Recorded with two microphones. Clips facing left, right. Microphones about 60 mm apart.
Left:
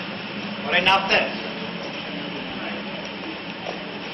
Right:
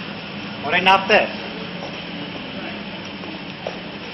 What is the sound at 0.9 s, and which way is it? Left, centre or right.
Speech, right.